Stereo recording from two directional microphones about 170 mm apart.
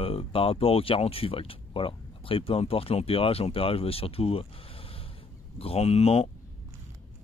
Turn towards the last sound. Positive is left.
turn(degrees=40)  # may be behind; listen again after turning